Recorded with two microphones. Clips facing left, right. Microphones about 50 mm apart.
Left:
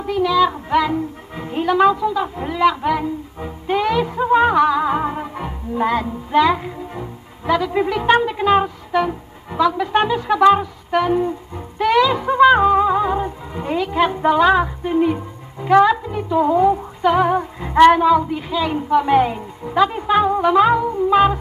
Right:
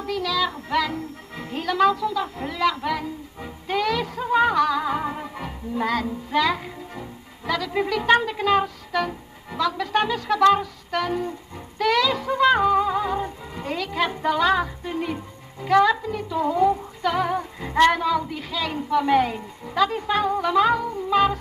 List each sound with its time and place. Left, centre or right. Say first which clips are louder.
0.0 s a child's voice: left 8 dB; left
11.8 s music: left 6 dB; left